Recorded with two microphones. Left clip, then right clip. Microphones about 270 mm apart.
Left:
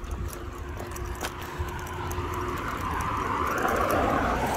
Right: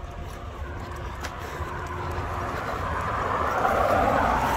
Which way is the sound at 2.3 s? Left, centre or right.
Right.